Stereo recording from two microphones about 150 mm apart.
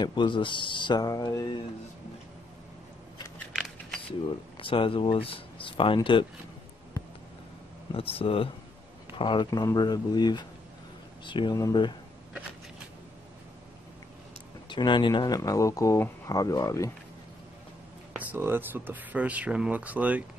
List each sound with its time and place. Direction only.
0.0 s speech: 30° left (ahead or behind)
4.6 s speech: 35° left (ahead or behind)
7.9 s speech: 40° left (ahead or behind)
14.7 s speech: 30° left (ahead or behind)
18.1 s speech: 15° right (ahead or behind)